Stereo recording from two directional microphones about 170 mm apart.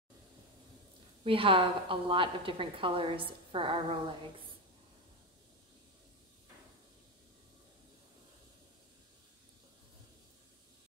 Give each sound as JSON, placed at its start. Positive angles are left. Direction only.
{"t": 1.2, "sound": "a woman's voice", "side_deg": -30}